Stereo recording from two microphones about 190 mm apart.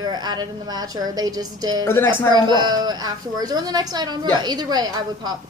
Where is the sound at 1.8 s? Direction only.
10° left (ahead or behind).